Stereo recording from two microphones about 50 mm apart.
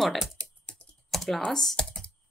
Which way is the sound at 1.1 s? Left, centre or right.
Centre.